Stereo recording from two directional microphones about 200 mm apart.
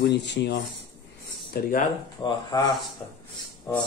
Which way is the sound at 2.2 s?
20° left (ahead or behind).